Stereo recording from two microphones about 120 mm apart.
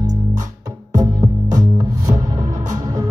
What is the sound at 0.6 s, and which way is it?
Music, 30° right (ahead or behind).